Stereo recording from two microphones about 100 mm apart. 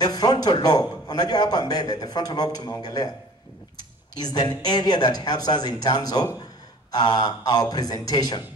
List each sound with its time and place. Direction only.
0.0 s a man's voice: 45° left (ahead or behind)
4.2 s a man's voice: 45° left (ahead or behind)